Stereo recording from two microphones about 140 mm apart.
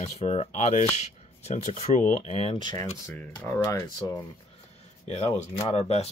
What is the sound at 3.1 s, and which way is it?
Speech, 10° left (ahead or behind).